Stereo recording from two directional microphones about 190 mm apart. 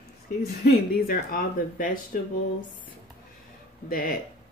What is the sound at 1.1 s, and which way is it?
A woman's voice, 50° left (ahead or behind).